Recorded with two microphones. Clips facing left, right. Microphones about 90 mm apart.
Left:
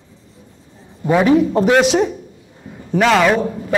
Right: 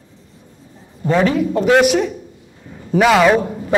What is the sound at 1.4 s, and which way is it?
Speech, 25° left (ahead or behind).